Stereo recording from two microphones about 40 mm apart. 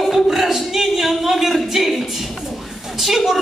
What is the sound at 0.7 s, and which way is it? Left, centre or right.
A woman's voice, centre.